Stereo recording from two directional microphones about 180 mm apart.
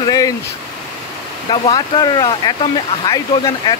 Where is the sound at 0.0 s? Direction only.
20° left (ahead or behind).